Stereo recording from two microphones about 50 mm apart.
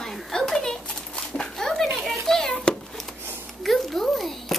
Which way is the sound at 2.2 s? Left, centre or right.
Centre.